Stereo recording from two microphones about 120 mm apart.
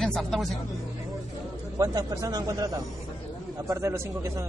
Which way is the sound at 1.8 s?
30° right (ahead or behind).